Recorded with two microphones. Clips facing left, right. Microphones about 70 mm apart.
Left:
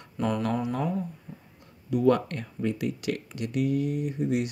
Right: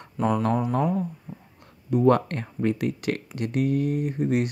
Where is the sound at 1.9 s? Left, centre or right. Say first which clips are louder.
Right 3 dB; right.